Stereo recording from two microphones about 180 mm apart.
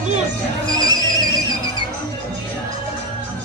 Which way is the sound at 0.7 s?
20° right (ahead or behind).